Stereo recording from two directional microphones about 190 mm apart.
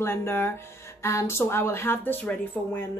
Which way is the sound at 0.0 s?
15° left (ahead or behind).